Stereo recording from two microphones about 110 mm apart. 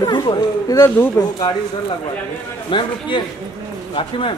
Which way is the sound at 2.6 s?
50° left (ahead or behind).